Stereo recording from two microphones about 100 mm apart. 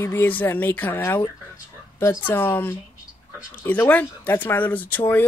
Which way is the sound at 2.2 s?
20° left (ahead or behind).